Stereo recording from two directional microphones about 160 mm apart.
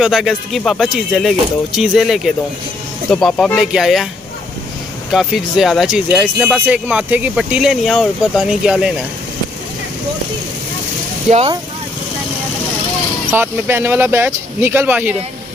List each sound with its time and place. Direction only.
0.0 s speech: centre (ahead or behind)
5.1 s speech: centre (ahead or behind)
11.2 s speech: 40° right (ahead or behind)
13.3 s speech: 15° right (ahead or behind)